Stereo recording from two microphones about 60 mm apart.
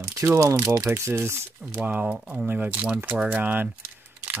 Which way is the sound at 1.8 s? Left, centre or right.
Centre.